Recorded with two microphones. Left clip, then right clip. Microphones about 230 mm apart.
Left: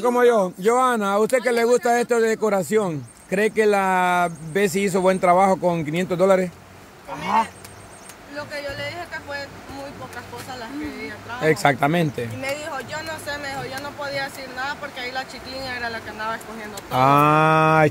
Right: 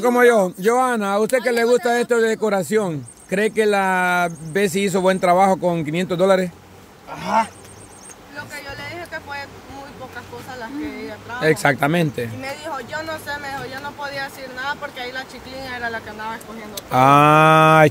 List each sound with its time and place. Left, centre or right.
0.0 s mantra: right
0.7 s speech: centre
8.5 s a sound: centre
11.4 s speech: centre
12.4 s speech: centre
16.9 s mantra: centre